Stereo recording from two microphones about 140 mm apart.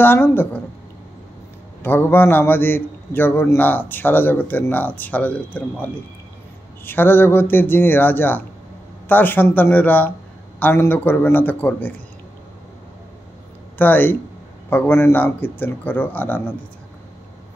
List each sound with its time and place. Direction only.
0.0 s a man's voice: 15° left (ahead or behind)
1.8 s a man's voice: 15° left (ahead or behind)
13.7 s a man's voice: 15° left (ahead or behind)